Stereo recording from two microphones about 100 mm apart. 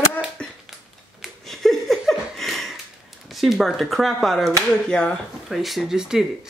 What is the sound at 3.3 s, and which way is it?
Speech, centre (ahead or behind).